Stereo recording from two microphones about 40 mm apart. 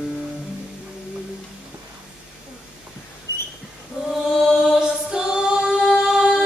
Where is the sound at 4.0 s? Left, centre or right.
Centre.